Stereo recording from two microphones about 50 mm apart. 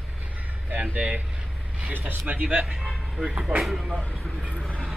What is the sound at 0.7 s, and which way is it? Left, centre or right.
Speech, right.